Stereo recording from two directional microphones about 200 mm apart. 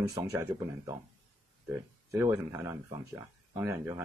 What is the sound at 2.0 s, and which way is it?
Speech, 10° right (ahead or behind).